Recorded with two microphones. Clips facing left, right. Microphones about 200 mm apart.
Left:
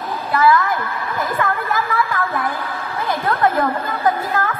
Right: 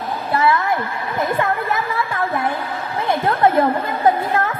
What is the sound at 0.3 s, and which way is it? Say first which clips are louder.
A woman's voice: left 2 dB; 25° right (ahead or behind).